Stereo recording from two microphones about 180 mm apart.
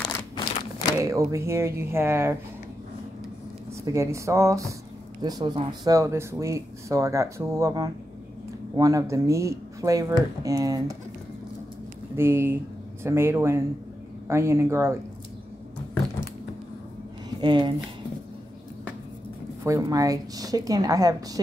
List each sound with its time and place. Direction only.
0.9 s speech: 15° right (ahead or behind)
3.8 s speech: 15° right (ahead or behind)
12.2 s speech: 15° right (ahead or behind)
17.4 s speech: 25° right (ahead or behind)
19.6 s a woman's voice: 20° right (ahead or behind)